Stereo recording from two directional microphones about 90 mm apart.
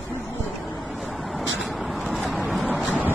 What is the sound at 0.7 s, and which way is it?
Vehicle, centre (ahead or behind).